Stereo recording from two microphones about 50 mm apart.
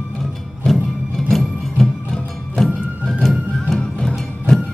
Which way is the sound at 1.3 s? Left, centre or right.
Centre.